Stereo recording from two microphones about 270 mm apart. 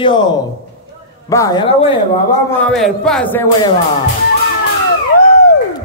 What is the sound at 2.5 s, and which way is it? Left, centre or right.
Speech, centre.